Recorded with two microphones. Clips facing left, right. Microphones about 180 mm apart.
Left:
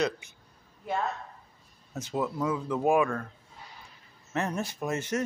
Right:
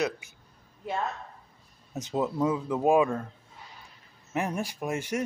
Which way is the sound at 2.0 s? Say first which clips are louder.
Right 3 dB; 20° right (ahead or behind).